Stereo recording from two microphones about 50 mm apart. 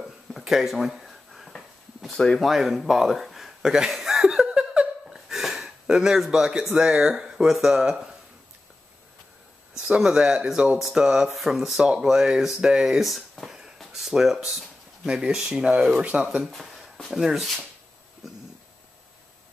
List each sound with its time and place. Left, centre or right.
0.5 s a sound: centre
2.1 s speech: centre
2.4 s chuckle: centre
6.8 s speech: centre
9.8 s speech: centre
11.2 s speech: centre
11.8 s speech: centre
13.7 s a sound: centre
15.0 s speech: centre
16.4 s a sound: centre
17.1 s speech: centre